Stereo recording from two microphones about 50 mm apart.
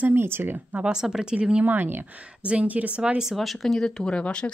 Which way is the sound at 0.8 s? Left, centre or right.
Centre.